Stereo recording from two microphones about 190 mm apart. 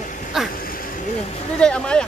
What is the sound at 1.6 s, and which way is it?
Speech, 5° left (ahead or behind).